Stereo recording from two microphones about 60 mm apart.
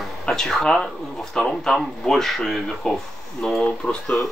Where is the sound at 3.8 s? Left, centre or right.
Left.